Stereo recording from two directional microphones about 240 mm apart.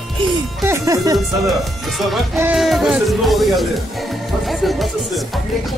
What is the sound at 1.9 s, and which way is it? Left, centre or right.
Speech, centre.